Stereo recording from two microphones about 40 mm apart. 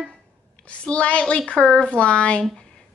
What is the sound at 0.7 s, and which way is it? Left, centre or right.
A woman's voice, left.